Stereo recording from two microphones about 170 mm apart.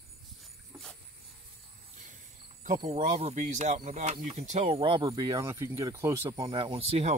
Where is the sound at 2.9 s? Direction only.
45° right (ahead or behind); by 6.5 s 15° right (ahead or behind).